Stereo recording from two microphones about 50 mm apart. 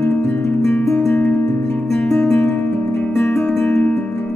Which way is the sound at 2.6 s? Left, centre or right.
Left.